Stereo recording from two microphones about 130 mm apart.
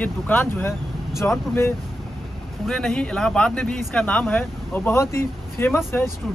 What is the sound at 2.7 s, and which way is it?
Speech, 5° left (ahead or behind).